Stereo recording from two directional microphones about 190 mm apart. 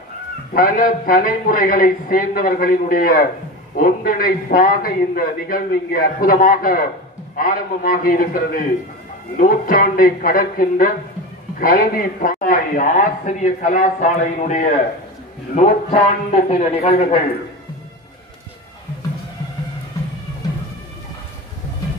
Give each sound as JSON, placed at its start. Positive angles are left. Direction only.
{"t": 0.5, "sound": "a man's voice", "side_deg": 45}